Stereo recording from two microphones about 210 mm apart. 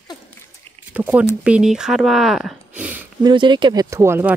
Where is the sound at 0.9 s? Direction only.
10° right (ahead or behind).